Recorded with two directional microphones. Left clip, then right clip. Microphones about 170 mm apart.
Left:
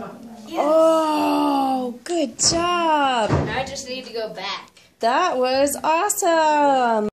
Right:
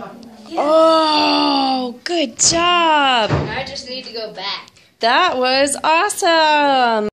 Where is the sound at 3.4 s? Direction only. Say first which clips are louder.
Right 1 dB; 35° left (ahead or behind).